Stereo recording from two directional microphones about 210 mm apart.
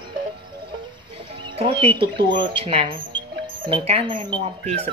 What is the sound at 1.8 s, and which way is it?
Speech, 25° right (ahead or behind).